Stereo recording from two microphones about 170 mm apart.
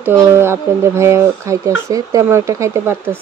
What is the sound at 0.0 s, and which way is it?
Speech, 15° right (ahead or behind).